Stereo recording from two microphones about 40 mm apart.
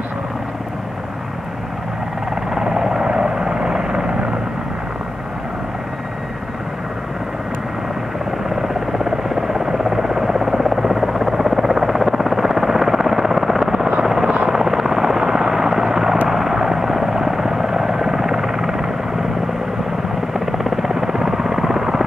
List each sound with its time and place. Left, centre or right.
2.5 s helicopter: centre
8.5 s helicopter: centre
20.3 s helicopter: centre